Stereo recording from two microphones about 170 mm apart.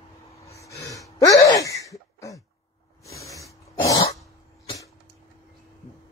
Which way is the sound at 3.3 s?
20° left (ahead or behind).